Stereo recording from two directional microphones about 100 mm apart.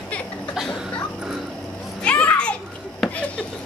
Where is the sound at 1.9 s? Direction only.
10° left (ahead or behind).